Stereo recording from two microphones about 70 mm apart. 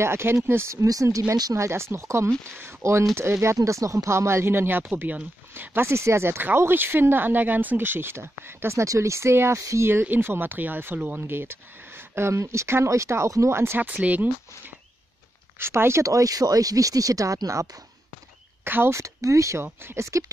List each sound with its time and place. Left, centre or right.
0.0 s speech: right
0.7 s speech: right
10.0 s speech: right
13.7 s speech: right
15.6 s speech: right
18.6 s speech: right
18.9 s speech: right
19.6 s speech: right